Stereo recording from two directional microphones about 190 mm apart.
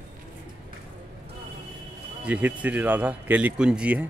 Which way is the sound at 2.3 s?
10° right (ahead or behind).